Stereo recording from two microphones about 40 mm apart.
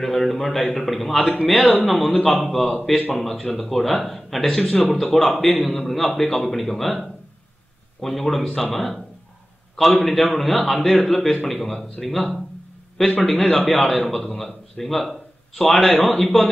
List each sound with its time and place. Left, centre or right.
0.0 s a man's voice: centre
10.0 s a man's voice: centre